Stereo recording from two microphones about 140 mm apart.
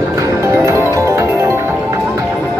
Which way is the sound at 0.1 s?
20° right (ahead or behind).